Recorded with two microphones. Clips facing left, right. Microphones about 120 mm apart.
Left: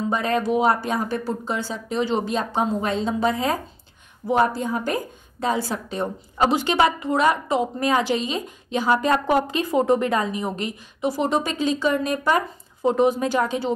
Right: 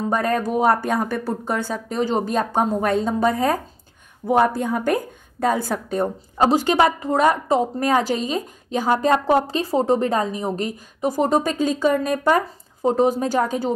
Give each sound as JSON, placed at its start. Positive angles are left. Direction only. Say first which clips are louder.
{"t": 0.0, "sound": "a woman's voice", "louder": "right 1 dB", "side_deg": -50}